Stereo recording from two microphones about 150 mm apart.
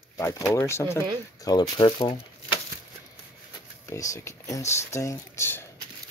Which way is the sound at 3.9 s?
20° left (ahead or behind).